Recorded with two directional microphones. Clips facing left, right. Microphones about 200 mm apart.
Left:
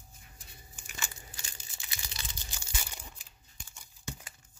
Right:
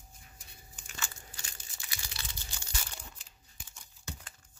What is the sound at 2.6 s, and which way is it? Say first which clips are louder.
Crumpling: left 1 dB; 15° left (ahead or behind).